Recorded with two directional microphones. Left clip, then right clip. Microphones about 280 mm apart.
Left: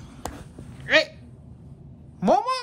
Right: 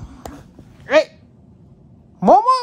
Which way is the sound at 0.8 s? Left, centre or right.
Right.